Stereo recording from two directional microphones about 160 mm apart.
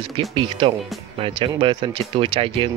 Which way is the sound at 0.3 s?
30° right (ahead or behind).